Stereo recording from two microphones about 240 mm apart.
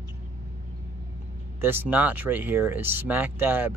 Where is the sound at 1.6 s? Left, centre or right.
Centre.